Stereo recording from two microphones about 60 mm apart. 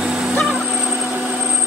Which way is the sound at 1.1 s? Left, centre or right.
Right.